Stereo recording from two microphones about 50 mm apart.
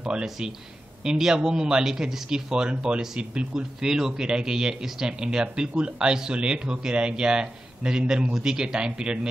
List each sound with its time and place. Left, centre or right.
0.0 s speech: centre